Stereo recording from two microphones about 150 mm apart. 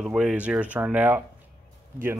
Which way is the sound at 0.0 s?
5° right (ahead or behind).